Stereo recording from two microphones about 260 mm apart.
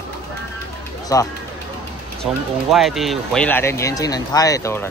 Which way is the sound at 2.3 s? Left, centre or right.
Centre.